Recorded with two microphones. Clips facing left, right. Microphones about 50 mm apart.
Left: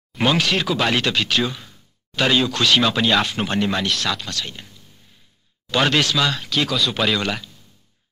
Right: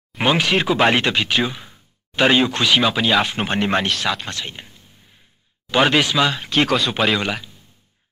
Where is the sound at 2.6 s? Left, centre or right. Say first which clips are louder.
Even; centre.